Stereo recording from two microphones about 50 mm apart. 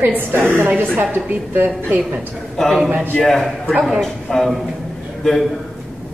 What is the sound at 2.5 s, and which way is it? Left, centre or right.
A man's voice, centre.